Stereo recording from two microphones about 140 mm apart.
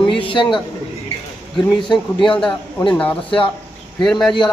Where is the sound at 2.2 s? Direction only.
5° left (ahead or behind).